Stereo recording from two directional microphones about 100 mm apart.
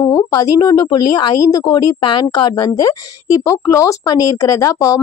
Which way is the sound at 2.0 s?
50° left (ahead or behind).